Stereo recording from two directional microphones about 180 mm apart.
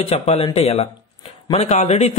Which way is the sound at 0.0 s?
35° left (ahead or behind).